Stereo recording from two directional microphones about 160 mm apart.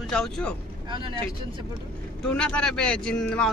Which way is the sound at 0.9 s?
30° right (ahead or behind).